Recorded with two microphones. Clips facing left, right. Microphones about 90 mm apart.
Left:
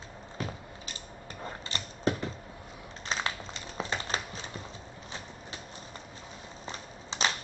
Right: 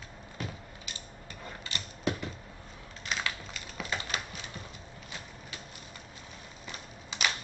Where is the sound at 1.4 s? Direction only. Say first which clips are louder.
Left 3 dB; 35° left (ahead or behind).